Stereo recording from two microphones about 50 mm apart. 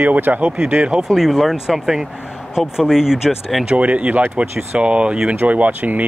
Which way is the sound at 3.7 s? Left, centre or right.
Right.